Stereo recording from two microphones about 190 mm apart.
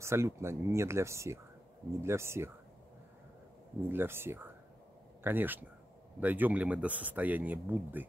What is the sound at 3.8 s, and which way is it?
Speech, 10° right (ahead or behind).